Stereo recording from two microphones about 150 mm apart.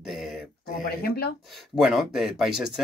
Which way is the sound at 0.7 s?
90° left.